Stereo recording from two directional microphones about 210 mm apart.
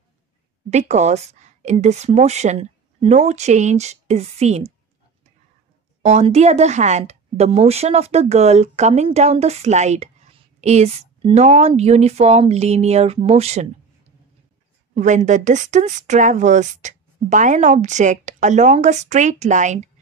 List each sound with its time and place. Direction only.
0.7 s speech: 30° right (ahead or behind)
6.0 s speech: 30° right (ahead or behind)
15.0 s speech: 35° right (ahead or behind)